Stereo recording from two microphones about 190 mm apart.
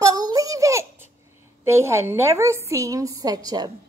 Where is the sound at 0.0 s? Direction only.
20° right (ahead or behind).